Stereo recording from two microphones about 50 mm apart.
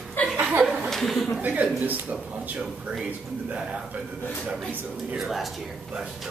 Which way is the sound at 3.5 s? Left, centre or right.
Centre.